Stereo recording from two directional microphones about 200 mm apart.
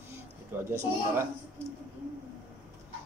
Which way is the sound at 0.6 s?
10° right (ahead or behind).